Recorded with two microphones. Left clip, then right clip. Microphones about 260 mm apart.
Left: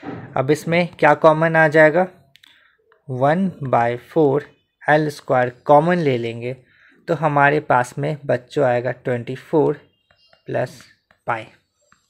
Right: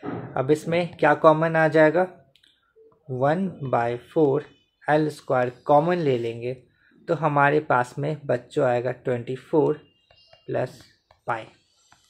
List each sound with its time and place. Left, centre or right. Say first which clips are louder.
0.3 s speech: left 4 dB; left